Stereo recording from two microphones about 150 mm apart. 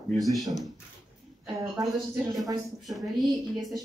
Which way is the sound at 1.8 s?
25° right (ahead or behind).